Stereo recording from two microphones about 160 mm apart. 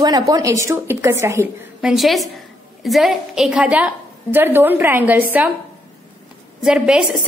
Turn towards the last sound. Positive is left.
turn(degrees=-5)  # may be behind; listen again after turning